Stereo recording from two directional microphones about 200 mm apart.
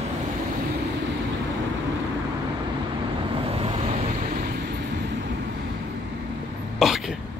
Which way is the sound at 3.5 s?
30° right (ahead or behind).